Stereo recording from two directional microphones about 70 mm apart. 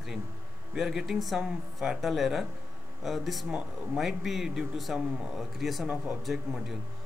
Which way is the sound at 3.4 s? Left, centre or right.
Centre.